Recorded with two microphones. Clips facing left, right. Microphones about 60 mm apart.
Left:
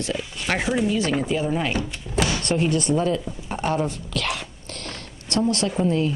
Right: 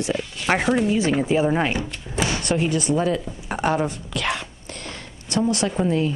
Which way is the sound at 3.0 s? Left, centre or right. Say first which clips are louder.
Right 1 dB; centre.